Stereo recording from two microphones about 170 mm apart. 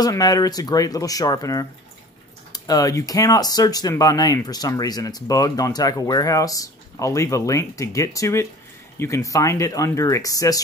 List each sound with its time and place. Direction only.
0.0 s speech: 20° left (ahead or behind)